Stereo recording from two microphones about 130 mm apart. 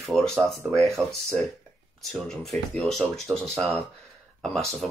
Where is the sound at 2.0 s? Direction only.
Centre (ahead or behind).